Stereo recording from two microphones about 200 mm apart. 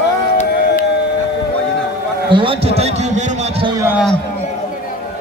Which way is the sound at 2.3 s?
25° right (ahead or behind).